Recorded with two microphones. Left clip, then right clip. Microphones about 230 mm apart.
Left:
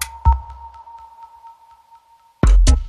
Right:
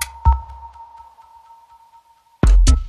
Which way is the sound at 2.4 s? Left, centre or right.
Centre.